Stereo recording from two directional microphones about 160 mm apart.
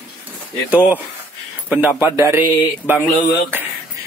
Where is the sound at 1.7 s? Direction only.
10° right (ahead or behind).